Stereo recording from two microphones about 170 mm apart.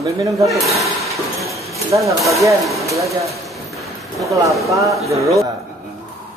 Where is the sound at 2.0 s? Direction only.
20° right (ahead or behind).